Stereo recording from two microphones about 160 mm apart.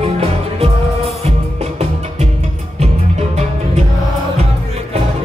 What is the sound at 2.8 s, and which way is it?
Music, 40° right (ahead or behind).